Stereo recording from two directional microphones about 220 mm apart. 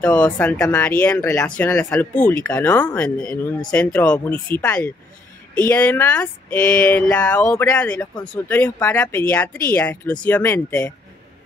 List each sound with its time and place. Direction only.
0.0 s speech: 5° left (ahead or behind)